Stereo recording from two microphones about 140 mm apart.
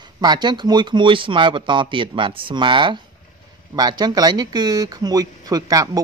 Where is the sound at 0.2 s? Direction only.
30° right (ahead or behind).